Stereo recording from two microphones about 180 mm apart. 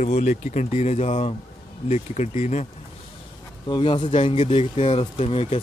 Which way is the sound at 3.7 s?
30° left (ahead or behind).